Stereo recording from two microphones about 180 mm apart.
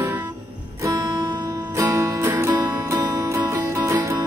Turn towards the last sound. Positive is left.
turn(degrees=-15)  # may be behind; listen again after turning